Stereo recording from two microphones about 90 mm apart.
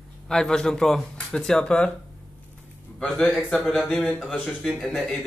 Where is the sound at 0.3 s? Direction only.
5° left (ahead or behind).